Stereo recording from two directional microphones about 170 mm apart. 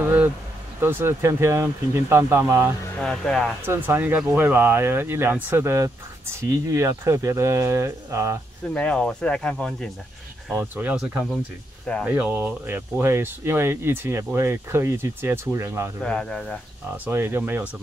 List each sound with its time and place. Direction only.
0.0 s vehicle: 10° right (ahead or behind)
0.7 s speech: 15° right (ahead or behind)
3.0 s speech: 5° left (ahead or behind)
3.6 s speech: 15° right (ahead or behind)
8.7 s speech: 5° left (ahead or behind)
10.5 s speech: 10° right (ahead or behind)
16.0 s speech: 5° left (ahead or behind)
16.9 s speech: 10° right (ahead or behind)